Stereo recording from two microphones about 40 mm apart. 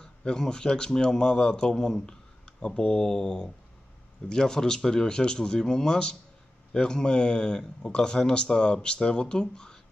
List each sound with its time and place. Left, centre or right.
0.0 s speech: centre